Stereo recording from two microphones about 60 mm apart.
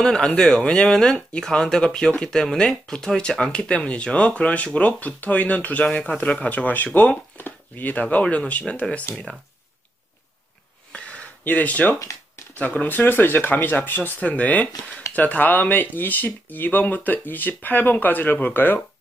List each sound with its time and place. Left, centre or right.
0.0 s speech: centre; by 8.8 s left
9.1 s speech: centre
10.9 s a sound: left
12.5 s speech: left